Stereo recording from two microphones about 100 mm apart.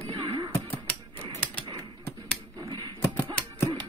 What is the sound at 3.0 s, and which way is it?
Music, 25° left (ahead or behind).